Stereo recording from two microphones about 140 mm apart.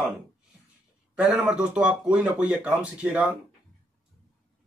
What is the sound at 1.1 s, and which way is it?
Speech, 10° right (ahead or behind).